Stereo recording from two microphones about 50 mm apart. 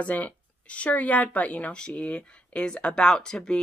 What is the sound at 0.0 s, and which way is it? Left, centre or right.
Speech, left.